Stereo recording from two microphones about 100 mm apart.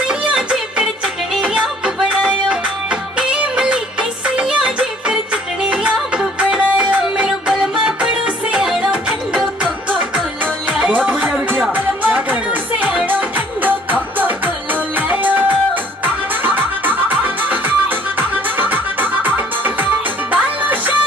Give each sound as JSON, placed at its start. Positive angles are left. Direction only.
{"t": 0.3, "sound": "music", "side_deg": -10}